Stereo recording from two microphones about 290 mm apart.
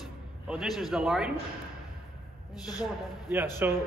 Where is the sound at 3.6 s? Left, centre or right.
Centre.